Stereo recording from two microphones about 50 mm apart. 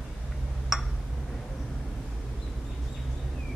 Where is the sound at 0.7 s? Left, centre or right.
Centre.